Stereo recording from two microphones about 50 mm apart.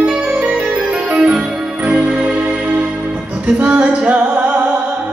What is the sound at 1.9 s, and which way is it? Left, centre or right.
Music, right.